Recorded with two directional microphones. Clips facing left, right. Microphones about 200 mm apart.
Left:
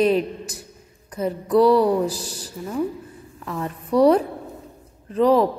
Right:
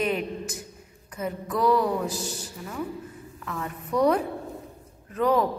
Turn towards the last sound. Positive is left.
turn(degrees=35)  # may be behind; listen again after turning